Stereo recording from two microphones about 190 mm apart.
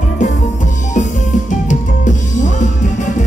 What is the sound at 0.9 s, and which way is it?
Music, 40° left (ahead or behind).